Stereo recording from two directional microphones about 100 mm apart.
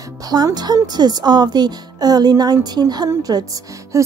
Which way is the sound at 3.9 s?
30° right (ahead or behind).